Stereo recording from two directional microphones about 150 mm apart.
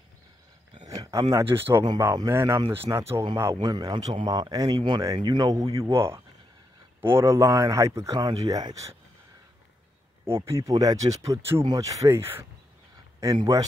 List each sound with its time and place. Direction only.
0.8 s a sound: 25° right (ahead or behind)
1.3 s a man's voice: 15° right (ahead or behind)
10.2 s a man's voice: 15° right (ahead or behind)